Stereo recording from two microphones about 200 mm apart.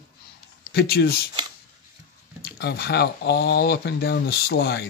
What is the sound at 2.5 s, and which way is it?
Speech, 55° left (ahead or behind).